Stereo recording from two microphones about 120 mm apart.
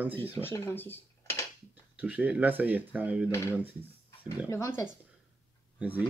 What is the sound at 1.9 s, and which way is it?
Speech, 10° right (ahead or behind).